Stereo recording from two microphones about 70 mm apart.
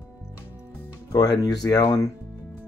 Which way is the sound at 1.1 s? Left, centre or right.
Left.